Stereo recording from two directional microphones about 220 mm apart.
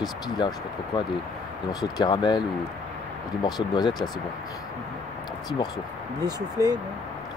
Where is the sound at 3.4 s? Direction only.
20° left (ahead or behind).